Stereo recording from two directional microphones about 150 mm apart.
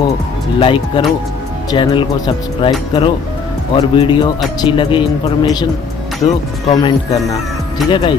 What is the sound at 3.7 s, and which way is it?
Speech, 35° left (ahead or behind).